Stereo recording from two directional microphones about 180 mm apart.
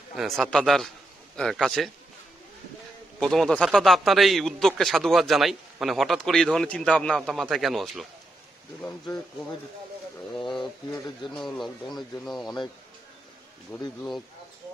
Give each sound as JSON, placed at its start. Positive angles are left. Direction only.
{"t": 0.1, "sound": "a man's voice", "side_deg": 0}
{"t": 3.2, "sound": "a man's voice", "side_deg": 0}
{"t": 10.3, "sound": "a man's voice", "side_deg": 0}
{"t": 13.7, "sound": "speech", "side_deg": 20}